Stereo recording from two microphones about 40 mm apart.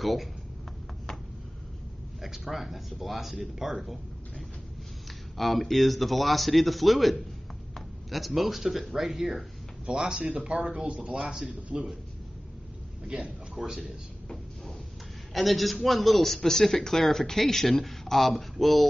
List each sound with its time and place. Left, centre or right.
0.0 s speech: centre
2.2 s speech: centre
5.4 s speech: centre
9.9 s speech: right
11.7 s a man's voice: right
13.6 s a man's voice: centre
15.3 s speech: centre